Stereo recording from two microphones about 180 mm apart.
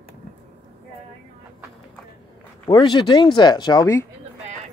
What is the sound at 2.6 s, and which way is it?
Speech, 25° left (ahead or behind).